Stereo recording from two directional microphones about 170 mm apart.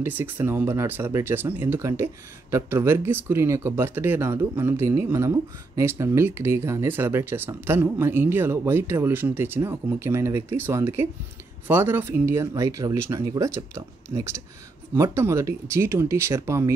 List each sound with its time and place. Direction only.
0.0 s speech: 15° right (ahead or behind)